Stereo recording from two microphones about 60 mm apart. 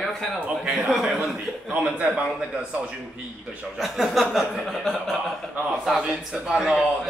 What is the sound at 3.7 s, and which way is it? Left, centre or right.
Speech, centre.